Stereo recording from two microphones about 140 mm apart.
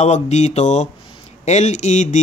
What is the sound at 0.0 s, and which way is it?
Speech, 55° left (ahead or behind).